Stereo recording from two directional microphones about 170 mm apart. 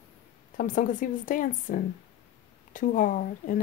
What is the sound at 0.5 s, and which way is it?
Speech, 50° left (ahead or behind).